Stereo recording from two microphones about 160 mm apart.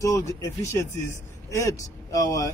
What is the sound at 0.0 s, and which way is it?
Speech, 20° left (ahead or behind).